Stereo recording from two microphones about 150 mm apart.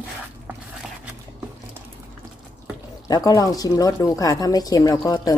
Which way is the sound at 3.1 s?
25° left (ahead or behind).